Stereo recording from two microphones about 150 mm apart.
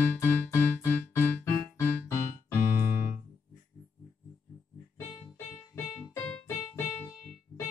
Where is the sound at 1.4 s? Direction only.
15° left (ahead or behind).